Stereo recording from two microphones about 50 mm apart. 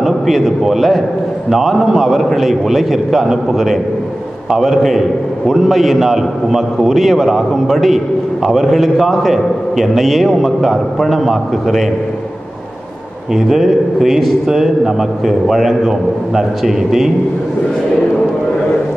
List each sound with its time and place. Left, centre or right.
0.0 s a man's voice: centre
13.3 s a man's voice: centre